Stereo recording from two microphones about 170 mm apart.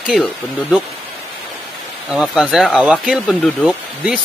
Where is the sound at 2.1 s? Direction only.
5° right (ahead or behind).